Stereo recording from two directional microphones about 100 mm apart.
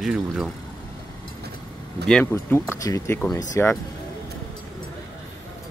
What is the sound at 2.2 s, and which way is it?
Speech, 25° left (ahead or behind).